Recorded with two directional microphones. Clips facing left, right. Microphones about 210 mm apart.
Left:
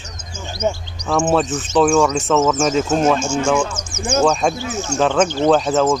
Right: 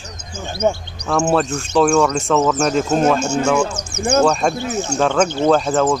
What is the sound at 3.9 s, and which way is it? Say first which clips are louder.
Speech: right 4 dB; 65° right (ahead or behind).